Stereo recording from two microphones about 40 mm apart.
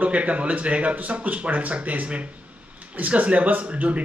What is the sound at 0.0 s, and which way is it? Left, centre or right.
Speech, right.